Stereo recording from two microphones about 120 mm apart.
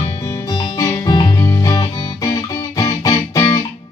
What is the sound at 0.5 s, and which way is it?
Music, 35° left (ahead or behind).